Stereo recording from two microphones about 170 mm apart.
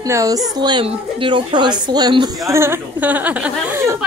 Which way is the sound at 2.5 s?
15° right (ahead or behind).